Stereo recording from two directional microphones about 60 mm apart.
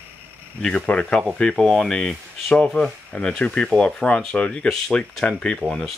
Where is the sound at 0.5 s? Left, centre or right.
Centre.